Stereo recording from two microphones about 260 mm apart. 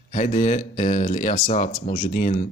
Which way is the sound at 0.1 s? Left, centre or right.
Left.